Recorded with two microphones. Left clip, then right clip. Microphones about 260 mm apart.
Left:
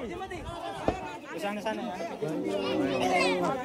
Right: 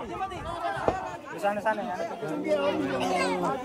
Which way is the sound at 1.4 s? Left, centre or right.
Centre.